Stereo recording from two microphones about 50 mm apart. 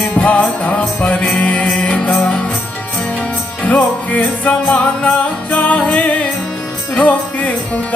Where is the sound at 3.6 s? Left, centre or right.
Left.